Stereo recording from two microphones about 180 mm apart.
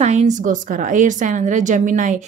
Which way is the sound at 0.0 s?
40° right (ahead or behind).